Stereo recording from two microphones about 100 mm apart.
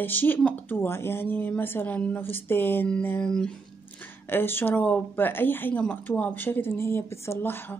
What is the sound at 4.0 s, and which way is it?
A woman's voice, 20° left (ahead or behind).